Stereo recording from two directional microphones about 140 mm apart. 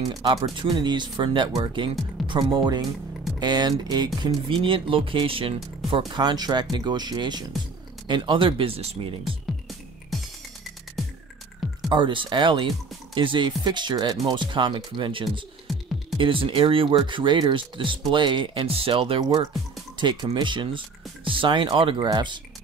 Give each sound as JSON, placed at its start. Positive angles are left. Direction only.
{"t": 0.2, "sound": "speech", "side_deg": -35}
{"t": 9.5, "sound": "music", "side_deg": 0}
{"t": 11.9, "sound": "speech", "side_deg": -35}
{"t": 15.7, "sound": "music", "side_deg": 0}
{"t": 16.2, "sound": "speech", "side_deg": -40}